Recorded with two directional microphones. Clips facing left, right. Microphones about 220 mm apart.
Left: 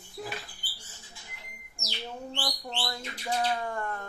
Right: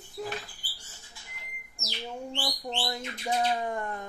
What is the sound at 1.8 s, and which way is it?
Bird, centre (ahead or behind).